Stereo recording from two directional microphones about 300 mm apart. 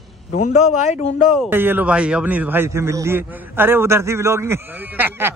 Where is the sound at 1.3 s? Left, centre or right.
Centre.